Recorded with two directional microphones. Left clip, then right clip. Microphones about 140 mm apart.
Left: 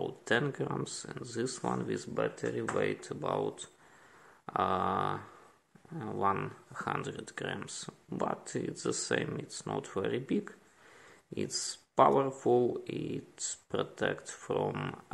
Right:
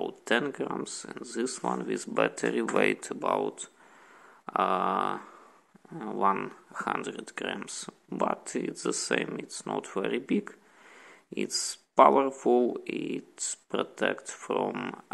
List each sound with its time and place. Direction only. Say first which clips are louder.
0.0 s speech: right 3 dB; 30° right (ahead or behind)
2.1 s speech: right 8 dB; 75° right (ahead or behind)
2.7 s speech: right 7 dB; 60° right (ahead or behind); by 15.0 s 30° right (ahead or behind)